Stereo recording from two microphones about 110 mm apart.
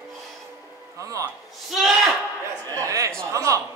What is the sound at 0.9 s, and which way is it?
Speech, 30° right (ahead or behind).